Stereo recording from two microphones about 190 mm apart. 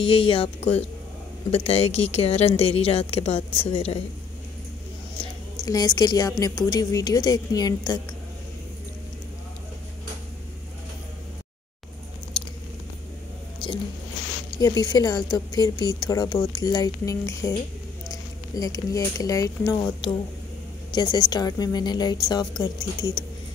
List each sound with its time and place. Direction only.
0.0 s a woman's voice: 30° left (ahead or behind)
5.7 s a woman's voice: 20° left (ahead or behind)
14.6 s a woman's voice: 20° left (ahead or behind)